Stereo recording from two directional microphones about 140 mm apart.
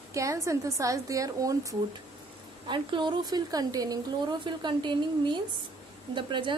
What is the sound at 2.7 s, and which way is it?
A woman's voice, 35° right (ahead or behind).